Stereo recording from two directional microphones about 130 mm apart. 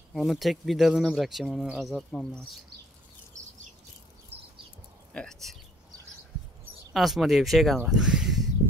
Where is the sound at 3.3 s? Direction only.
70° right (ahead or behind).